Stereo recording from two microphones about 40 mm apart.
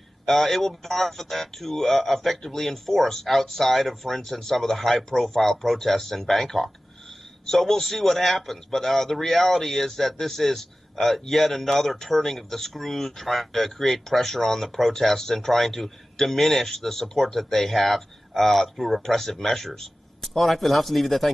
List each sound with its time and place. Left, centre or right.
0.3 s a man's voice: centre